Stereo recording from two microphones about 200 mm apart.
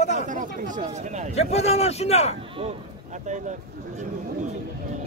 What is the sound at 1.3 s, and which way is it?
Speech, 30° left (ahead or behind).